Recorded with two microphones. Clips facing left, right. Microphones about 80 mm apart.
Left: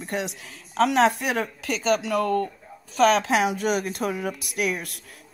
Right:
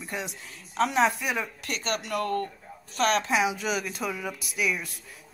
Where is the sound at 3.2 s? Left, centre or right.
Left.